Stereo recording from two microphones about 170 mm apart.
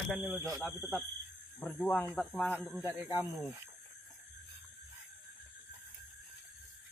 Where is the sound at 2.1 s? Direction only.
Centre (ahead or behind).